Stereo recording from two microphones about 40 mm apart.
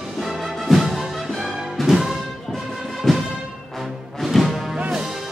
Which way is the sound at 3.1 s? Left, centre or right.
Centre.